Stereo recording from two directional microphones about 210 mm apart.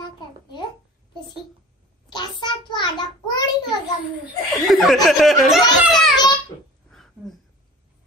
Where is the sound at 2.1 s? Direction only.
20° left (ahead or behind).